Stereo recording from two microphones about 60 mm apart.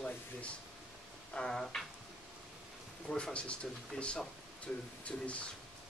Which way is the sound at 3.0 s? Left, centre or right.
Centre.